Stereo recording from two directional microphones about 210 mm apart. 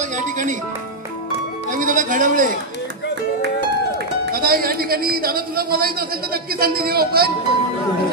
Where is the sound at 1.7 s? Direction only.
40° right (ahead or behind).